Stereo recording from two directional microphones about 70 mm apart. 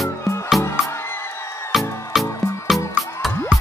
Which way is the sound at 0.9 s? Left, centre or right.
Left.